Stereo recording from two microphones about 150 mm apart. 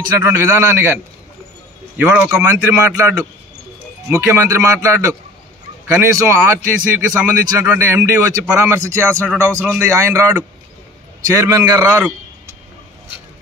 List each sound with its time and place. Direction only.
0.2 s speech: 15° right (ahead or behind)
9.5 s a man's voice: 5° left (ahead or behind)
9.8 s a man's voice: 20° right (ahead or behind)